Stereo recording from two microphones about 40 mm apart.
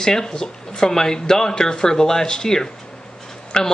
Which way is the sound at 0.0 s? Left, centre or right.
Centre.